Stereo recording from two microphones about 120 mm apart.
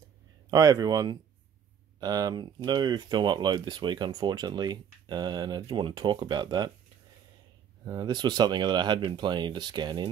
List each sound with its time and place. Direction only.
0.5 s speech: 30° right (ahead or behind)
7.8 s speech: 35° right (ahead or behind)